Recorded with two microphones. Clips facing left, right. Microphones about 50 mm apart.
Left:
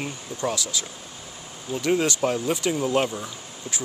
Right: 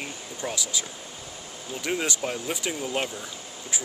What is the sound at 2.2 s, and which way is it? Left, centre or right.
Speech, centre.